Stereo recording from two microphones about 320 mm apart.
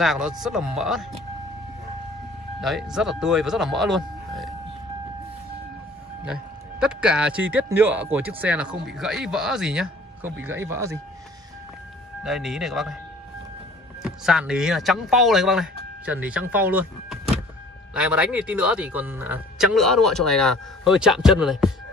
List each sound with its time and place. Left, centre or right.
0.0 s speech: centre
2.6 s speech: centre
6.2 s speech: centre
12.2 s speech: centre
14.0 s speech: centre